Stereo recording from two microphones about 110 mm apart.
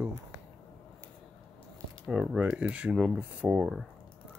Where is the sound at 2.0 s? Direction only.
10° right (ahead or behind).